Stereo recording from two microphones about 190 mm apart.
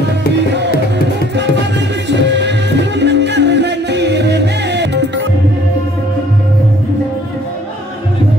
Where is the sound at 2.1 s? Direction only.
65° right (ahead or behind).